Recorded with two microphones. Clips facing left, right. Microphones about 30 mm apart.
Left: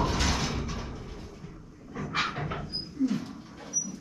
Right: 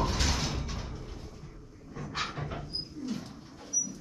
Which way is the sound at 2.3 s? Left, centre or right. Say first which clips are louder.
Left 4 dB; left.